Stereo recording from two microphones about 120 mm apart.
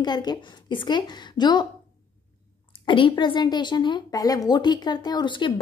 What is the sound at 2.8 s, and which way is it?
A woman's voice, 45° left (ahead or behind).